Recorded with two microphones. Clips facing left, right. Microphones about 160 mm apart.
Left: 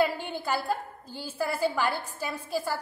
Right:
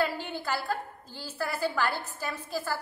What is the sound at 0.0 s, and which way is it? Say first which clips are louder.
A woman's voice: left 3 dB; 15° left (ahead or behind).